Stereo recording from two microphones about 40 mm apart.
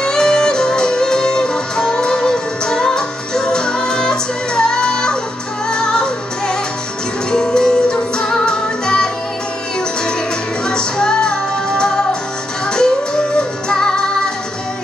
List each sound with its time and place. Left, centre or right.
0.0 s music: centre
10.6 s music: centre